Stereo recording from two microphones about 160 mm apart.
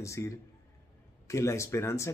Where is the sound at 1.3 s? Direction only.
20° left (ahead or behind).